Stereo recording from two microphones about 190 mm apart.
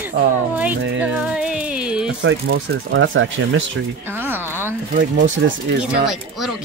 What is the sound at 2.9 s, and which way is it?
Speech, 90° right.